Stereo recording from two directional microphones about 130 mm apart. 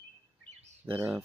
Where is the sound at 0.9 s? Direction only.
15° right (ahead or behind).